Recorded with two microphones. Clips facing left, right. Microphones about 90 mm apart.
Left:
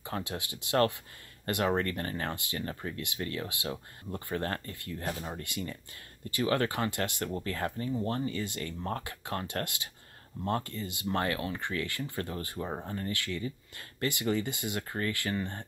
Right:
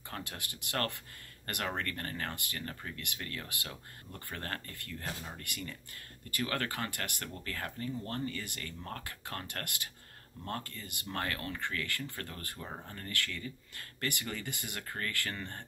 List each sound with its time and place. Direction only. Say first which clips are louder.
0.1 s speech: left 7 dB; 20° left (ahead or behind)
9.0 s speech: left 6 dB; 20° left (ahead or behind)